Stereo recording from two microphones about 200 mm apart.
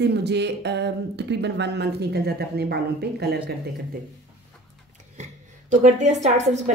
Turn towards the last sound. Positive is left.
turn(degrees=-35)  # may be behind; listen again after turning